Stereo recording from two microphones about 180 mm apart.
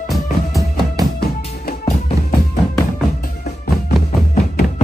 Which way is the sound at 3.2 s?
55° left (ahead or behind).